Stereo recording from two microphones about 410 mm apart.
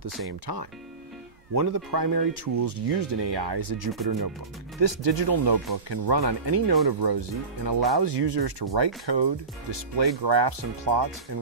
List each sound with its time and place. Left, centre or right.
0.5 s speech: right
1.5 s speech: right
4.7 s speech: right
5.5 s speech: right